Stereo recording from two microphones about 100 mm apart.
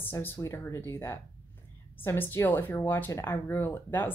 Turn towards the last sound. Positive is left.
turn(degrees=20)  # may be behind; listen again after turning